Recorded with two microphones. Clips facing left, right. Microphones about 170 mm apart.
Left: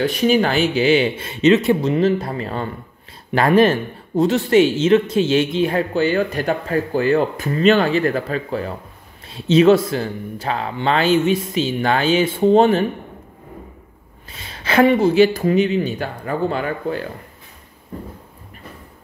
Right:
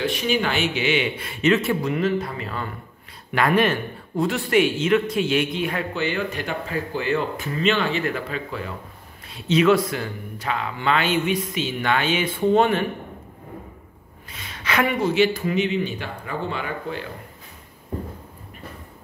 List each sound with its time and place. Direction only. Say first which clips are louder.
0.0 s speech: left 6 dB; 40° left (ahead or behind)
14.3 s speech: left 7 dB; 30° left (ahead or behind)